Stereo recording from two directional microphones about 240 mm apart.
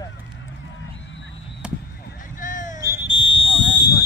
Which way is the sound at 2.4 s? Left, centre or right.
Left.